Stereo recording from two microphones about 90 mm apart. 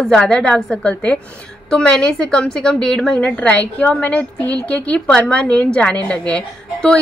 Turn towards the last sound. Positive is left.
turn(degrees=10)  # may be behind; listen again after turning